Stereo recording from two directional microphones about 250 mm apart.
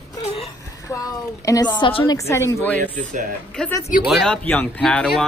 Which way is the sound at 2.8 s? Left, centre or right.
Right.